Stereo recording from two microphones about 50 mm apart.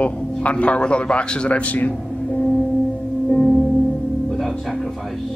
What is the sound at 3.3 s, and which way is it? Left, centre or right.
Music, centre.